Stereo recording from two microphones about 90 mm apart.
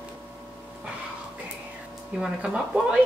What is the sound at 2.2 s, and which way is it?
Speech, 10° right (ahead or behind).